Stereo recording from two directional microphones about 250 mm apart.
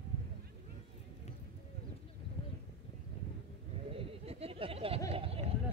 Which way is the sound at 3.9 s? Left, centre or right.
Right.